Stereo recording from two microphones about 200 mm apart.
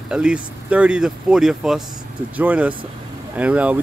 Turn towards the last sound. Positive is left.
turn(degrees=-5)  # may be behind; listen again after turning